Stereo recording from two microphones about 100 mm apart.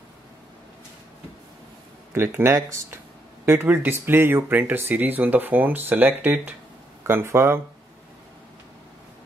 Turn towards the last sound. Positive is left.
turn(degrees=-25)  # may be behind; listen again after turning